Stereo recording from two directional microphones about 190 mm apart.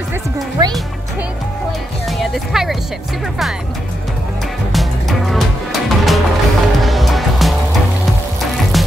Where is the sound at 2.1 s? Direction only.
Centre (ahead or behind).